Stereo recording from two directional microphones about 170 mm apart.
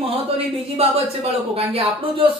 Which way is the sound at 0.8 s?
35° right (ahead or behind).